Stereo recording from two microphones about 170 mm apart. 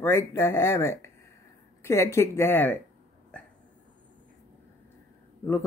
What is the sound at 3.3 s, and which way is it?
Hiccup, 5° left (ahead or behind).